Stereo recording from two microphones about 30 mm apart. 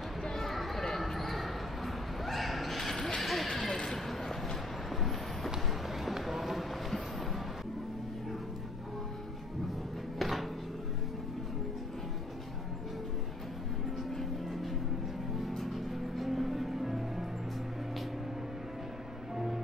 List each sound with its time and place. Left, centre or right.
0.2 s a sound: centre
4.1 s train: centre
6.2 s a sound: centre
14.4 s vehicle: centre
15.4 s music: centre
19.3 s music: centre